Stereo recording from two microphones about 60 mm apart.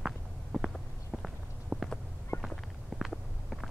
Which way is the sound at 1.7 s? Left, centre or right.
Right.